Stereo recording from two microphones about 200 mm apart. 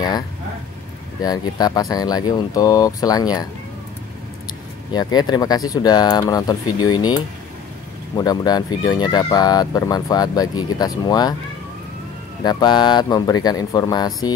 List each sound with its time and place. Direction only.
1.6 s speech: 20° left (ahead or behind)
4.9 s speech: 20° left (ahead or behind)
8.2 s speech: 20° left (ahead or behind)
12.4 s speech: 20° left (ahead or behind)